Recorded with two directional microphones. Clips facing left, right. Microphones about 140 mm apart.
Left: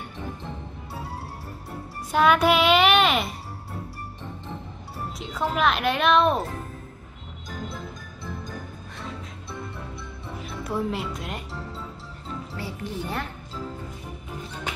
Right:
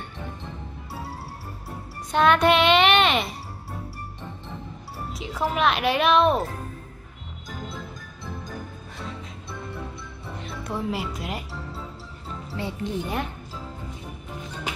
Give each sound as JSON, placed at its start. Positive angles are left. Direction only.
{"t": 2.0, "sound": "a child's voice", "side_deg": 5}
{"t": 5.1, "sound": "speech", "side_deg": -5}
{"t": 10.4, "sound": "speech", "side_deg": 5}
{"t": 12.5, "sound": "speech", "side_deg": -20}